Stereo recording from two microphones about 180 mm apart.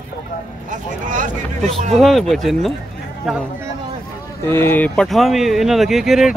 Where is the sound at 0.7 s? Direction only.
45° right (ahead or behind).